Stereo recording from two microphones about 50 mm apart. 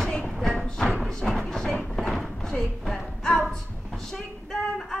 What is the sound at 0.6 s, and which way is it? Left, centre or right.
Thump, centre.